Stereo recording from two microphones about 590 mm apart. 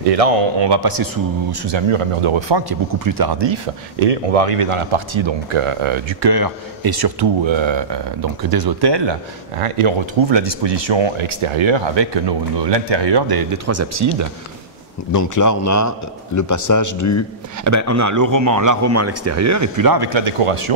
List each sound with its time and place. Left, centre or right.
0.0 s speech: right
0.6 s speech: right
3.0 s speech: right
4.0 s speech: right
9.6 s speech: right
13.7 s speech: right
15.1 s speech: left
17.6 s speech: right